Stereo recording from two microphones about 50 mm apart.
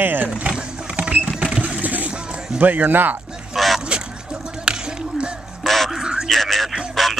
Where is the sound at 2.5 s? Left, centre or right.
Right.